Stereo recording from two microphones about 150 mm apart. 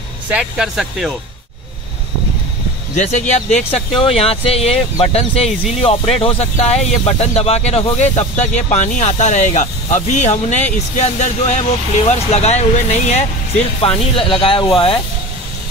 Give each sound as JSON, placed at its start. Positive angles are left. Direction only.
{"t": 0.3, "sound": "speech", "side_deg": -5}
{"t": 3.0, "sound": "speech", "side_deg": 50}
{"t": 13.7, "sound": "speech", "side_deg": 35}